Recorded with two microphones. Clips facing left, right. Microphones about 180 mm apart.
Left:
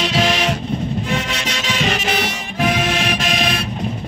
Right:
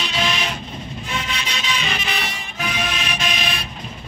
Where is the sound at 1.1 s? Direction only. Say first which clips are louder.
Left 6 dB; 70° left (ahead or behind).